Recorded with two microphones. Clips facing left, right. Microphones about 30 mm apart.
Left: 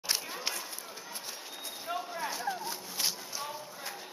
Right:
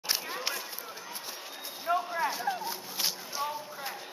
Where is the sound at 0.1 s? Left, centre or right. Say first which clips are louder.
Right 2 dB; centre.